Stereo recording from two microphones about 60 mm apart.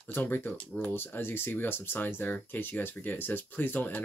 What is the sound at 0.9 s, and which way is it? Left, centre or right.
Speech, left.